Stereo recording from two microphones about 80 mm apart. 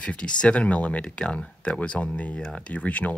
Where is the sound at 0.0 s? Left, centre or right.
Centre.